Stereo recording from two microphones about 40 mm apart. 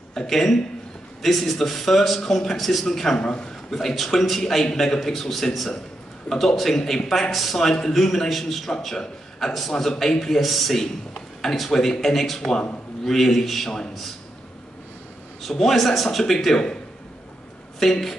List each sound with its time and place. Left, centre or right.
0.1 s a man's voice: centre
3.2 s a man's voice: left
3.7 s a man's voice: centre
7.6 s a man's voice: centre
15.4 s speech: centre
17.7 s a man's voice: centre